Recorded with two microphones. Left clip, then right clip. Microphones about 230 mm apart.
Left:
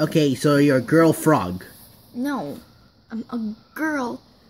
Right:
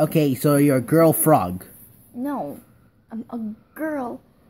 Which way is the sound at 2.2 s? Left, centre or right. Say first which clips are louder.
Even; left.